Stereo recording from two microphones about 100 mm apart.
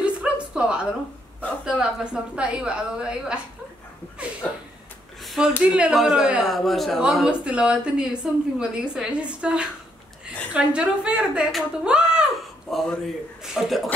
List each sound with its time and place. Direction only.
0.0 s a sound: 10° right (ahead or behind)
1.6 s a woman's voice: 10° right (ahead or behind)
5.2 s a sound: centre (ahead or behind)
5.7 s a man's voice: 10° right (ahead or behind)
7.0 s a woman's voice: 10° right (ahead or behind)
12.7 s a man's voice: 5° left (ahead or behind)